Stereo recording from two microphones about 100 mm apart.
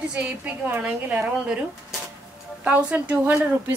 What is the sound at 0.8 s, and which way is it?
A woman's voice, 10° right (ahead or behind).